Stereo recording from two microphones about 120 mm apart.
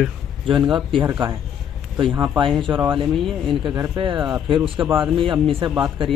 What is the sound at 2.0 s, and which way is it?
Speech, 40° right (ahead or behind).